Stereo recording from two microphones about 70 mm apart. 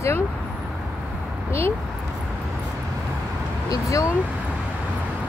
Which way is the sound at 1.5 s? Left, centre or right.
Left.